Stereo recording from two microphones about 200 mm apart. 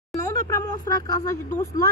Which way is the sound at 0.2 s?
15° left (ahead or behind).